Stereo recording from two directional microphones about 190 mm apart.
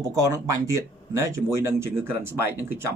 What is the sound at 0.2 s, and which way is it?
A man's voice, 15° right (ahead or behind).